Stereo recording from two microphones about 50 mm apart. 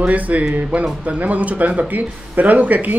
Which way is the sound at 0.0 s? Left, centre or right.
Right.